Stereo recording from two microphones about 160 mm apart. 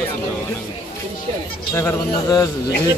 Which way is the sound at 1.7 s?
20° left (ahead or behind).